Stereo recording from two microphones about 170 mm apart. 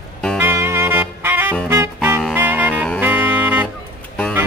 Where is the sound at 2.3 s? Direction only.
10° right (ahead or behind).